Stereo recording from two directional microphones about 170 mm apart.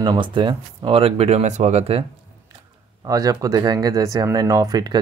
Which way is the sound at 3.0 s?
20° right (ahead or behind).